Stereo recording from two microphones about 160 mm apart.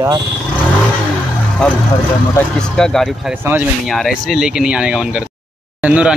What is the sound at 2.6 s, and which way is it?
Speech, 5° left (ahead or behind).